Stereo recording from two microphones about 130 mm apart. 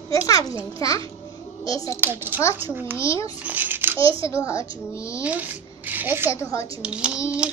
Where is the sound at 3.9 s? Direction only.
45° right (ahead or behind).